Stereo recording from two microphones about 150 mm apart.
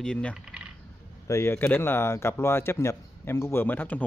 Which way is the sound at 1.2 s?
20° left (ahead or behind).